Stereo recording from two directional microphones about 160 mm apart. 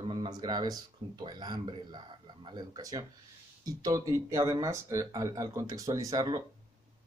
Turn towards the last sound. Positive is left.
turn(degrees=-25)  # may be behind; listen again after turning